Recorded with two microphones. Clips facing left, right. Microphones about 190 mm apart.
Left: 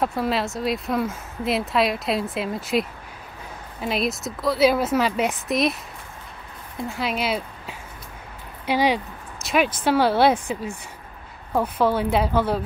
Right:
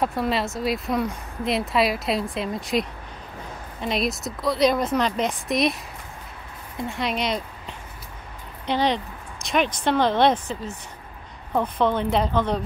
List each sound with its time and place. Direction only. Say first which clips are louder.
0.0 s speech: even; centre (ahead or behind)
6.8 s speech: even; centre (ahead or behind)